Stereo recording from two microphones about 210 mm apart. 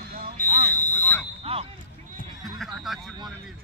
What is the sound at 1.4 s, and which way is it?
Speech, 30° right (ahead or behind).